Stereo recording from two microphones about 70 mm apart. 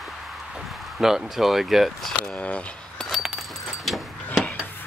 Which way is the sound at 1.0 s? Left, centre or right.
Centre.